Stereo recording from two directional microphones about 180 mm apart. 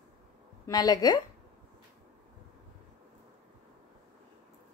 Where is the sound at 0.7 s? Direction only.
20° left (ahead or behind).